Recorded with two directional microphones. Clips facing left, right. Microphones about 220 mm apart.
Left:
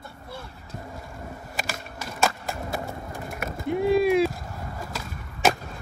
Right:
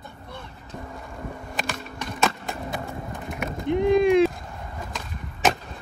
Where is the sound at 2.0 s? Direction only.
Centre (ahead or behind).